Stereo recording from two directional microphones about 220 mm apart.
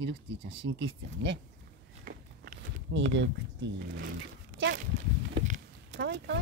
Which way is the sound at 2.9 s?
55° right (ahead or behind).